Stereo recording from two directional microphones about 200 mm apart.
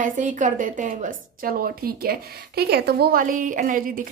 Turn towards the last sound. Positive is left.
turn(degrees=-45)  # may be behind; listen again after turning